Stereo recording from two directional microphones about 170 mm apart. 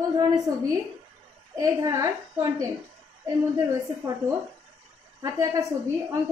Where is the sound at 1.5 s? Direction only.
20° right (ahead or behind).